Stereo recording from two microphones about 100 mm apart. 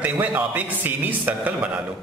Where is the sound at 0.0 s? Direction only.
15° right (ahead or behind).